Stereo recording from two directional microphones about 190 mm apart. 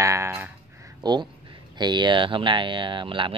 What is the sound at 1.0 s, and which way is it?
Speech, 20° right (ahead or behind).